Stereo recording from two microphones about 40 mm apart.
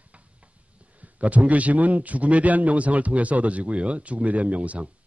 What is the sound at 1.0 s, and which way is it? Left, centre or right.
Speech, right.